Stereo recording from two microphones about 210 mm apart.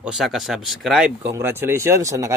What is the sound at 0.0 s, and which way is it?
Speech, centre (ahead or behind).